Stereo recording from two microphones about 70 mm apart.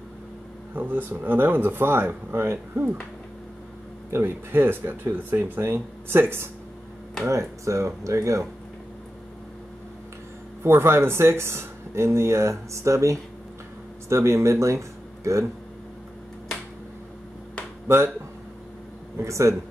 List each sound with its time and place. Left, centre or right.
0.7 s speech: right
4.1 s speech: right
7.2 s speech: right
10.6 s speech: right
17.8 s speech: right
19.2 s speech: right